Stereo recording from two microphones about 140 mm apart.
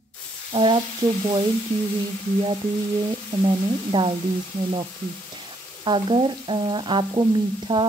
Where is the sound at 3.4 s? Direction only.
35° right (ahead or behind).